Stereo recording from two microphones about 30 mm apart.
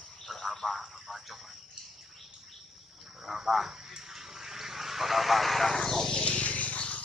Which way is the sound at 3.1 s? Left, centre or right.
Centre.